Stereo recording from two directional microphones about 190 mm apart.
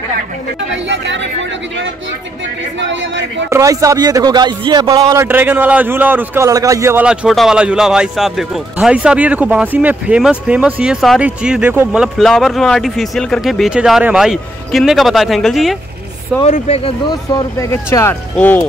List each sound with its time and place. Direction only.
0.6 s speech: 70° right (ahead or behind)
2.8 s speech: 75° right (ahead or behind)
3.4 s speech: 15° right (ahead or behind); by 15.8 s centre (ahead or behind)
16.4 s speech: 35° left (ahead or behind)
17.1 s speech: 20° left (ahead or behind)